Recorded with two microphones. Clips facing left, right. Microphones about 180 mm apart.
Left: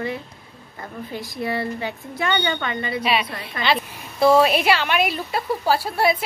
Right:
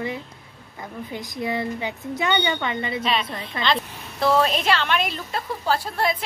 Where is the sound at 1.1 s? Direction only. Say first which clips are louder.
Left 1 dB; 20° right (ahead or behind).